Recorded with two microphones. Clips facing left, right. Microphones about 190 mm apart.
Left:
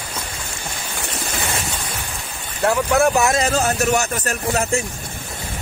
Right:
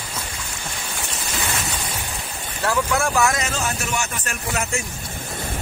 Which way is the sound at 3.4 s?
40° left (ahead or behind).